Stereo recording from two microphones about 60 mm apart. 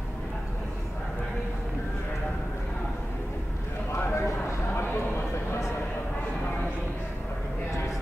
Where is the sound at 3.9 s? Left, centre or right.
Left.